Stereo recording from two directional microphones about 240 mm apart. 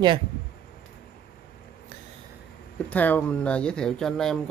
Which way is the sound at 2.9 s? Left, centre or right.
Centre.